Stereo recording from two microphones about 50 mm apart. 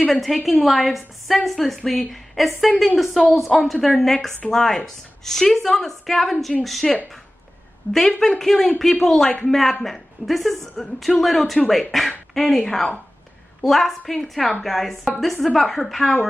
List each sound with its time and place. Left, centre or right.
0.0 s a woman's voice: centre
7.8 s a woman's voice: left
8.2 s a woman's voice: centre